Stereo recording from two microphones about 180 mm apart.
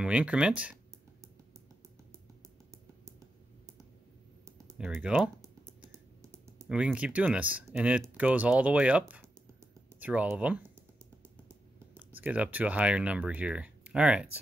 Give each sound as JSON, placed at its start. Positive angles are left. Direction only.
{"t": 0.0, "sound": "speech", "side_deg": -5}
{"t": 4.7, "sound": "speech", "side_deg": -5}
{"t": 5.4, "sound": "typing", "side_deg": -15}
{"t": 6.7, "sound": "speech", "side_deg": -5}
{"t": 12.2, "sound": "speech", "side_deg": -10}